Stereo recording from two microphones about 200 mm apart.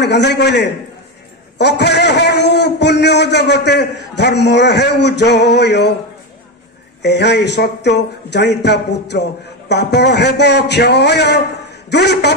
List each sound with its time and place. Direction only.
0.0 s a man's voice: 60° left (ahead or behind)
7.0 s a man's voice: 60° left (ahead or behind)